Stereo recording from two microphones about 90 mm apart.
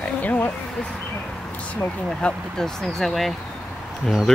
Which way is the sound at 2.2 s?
5° left (ahead or behind).